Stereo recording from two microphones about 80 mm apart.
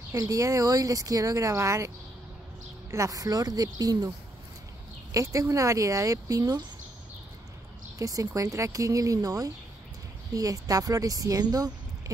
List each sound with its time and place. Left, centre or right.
0.1 s speech: right
2.9 s speech: right
5.1 s speech: right
8.0 s speech: right